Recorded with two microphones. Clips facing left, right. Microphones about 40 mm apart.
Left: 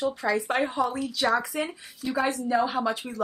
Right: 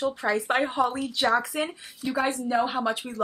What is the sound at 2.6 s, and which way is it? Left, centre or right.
Speech, right.